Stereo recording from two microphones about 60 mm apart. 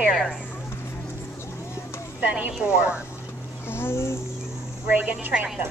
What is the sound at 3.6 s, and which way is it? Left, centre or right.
Speech, left.